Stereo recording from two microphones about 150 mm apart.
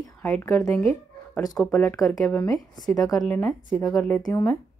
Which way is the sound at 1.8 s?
15° left (ahead or behind).